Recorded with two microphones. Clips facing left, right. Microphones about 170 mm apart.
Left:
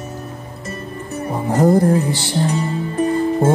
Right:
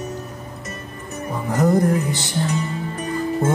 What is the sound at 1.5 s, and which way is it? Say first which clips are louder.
Music: left 4 dB; 30° left (ahead or behind).